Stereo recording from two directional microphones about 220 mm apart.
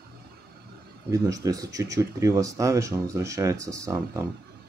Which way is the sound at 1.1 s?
15° right (ahead or behind).